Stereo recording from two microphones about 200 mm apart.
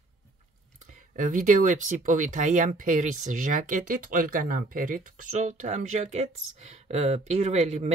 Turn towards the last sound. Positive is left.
turn(degrees=-35)  # may be behind; listen again after turning